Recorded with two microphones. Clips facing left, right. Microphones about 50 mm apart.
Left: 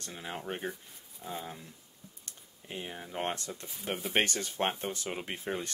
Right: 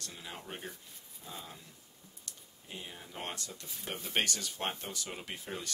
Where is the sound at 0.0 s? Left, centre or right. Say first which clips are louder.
Left 6 dB; left.